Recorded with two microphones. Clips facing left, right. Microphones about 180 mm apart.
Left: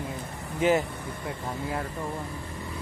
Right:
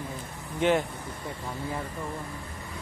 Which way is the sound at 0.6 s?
5° left (ahead or behind).